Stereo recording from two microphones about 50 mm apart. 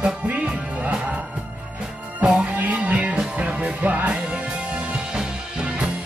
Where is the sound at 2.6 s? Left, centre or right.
Right.